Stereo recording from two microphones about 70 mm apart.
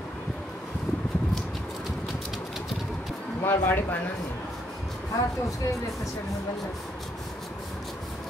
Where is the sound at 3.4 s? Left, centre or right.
Left.